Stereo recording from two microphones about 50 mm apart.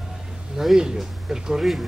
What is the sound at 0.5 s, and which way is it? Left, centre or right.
Speech, centre.